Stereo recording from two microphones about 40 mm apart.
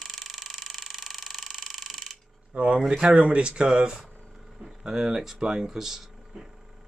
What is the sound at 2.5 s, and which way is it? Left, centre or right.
Speech, right.